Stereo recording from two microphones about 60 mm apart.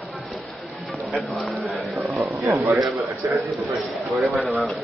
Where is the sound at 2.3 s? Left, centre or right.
Right.